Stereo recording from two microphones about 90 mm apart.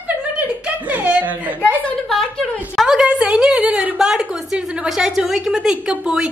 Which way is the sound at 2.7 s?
5° right (ahead or behind).